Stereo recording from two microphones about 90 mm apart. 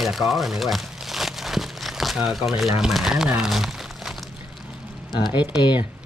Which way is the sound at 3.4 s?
5° right (ahead or behind).